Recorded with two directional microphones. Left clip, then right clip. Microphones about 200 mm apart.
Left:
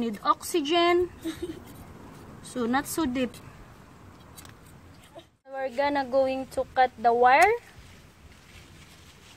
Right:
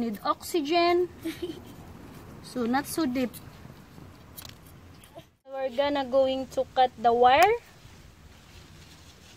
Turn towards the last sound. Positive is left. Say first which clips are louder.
# even
turn(degrees=0)  # may be behind; listen again after turning